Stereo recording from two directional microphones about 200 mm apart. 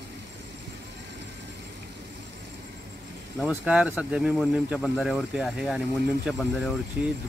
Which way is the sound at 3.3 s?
5° right (ahead or behind).